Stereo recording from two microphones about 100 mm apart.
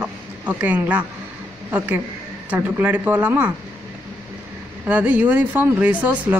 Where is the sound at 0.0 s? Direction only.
15° right (ahead or behind).